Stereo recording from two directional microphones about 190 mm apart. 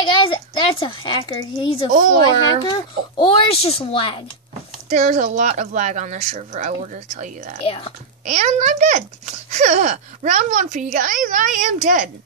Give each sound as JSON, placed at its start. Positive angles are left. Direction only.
{"t": 0.0, "sound": "a child's voice", "side_deg": 25}
{"t": 1.9, "sound": "speech", "side_deg": -45}
{"t": 2.6, "sound": "a child's voice", "side_deg": 25}
{"t": 4.8, "sound": "a child's voice", "side_deg": -40}
{"t": 7.6, "sound": "a child's voice", "side_deg": 30}
{"t": 8.3, "sound": "a child's voice", "side_deg": -40}